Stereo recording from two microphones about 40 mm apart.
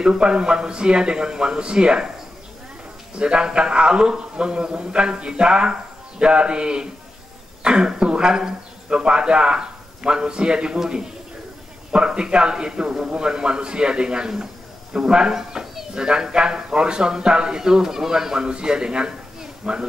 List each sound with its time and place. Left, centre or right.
0.0 s a man's voice: right
3.2 s a man's voice: right